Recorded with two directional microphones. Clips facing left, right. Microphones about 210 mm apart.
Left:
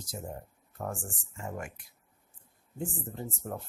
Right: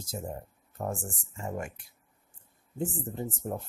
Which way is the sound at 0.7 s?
20° right (ahead or behind).